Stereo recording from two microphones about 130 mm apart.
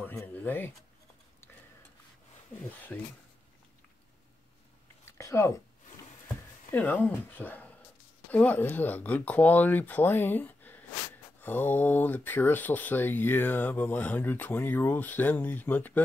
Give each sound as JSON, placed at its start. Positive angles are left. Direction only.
{"t": 0.0, "sound": "speech", "side_deg": 20}
{"t": 2.7, "sound": "speech", "side_deg": 15}
{"t": 5.1, "sound": "speech", "side_deg": 20}
{"t": 6.7, "sound": "speech", "side_deg": 15}